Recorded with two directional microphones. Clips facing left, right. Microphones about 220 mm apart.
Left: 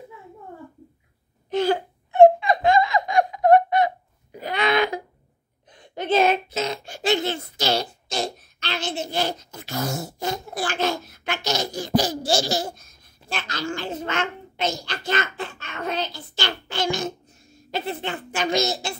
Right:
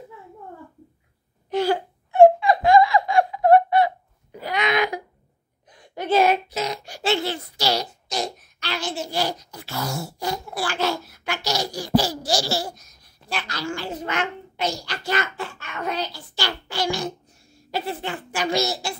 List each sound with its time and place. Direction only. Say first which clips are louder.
1.5 s laughter: even; 20° left (ahead or behind)
4.6 s wail: left 1 dB; 30° left (ahead or behind)
5.7 s a sound: even; 25° left (ahead or behind)